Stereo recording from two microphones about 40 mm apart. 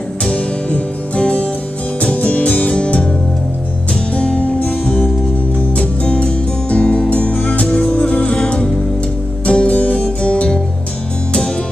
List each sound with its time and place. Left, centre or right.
0.3 s music: left
4.1 s music: left